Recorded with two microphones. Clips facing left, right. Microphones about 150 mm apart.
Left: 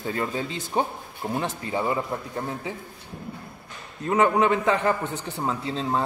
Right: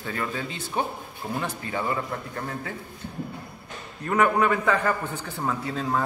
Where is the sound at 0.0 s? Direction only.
25° left (ahead or behind).